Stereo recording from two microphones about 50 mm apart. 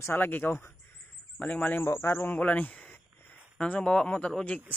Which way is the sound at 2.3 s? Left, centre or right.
Left.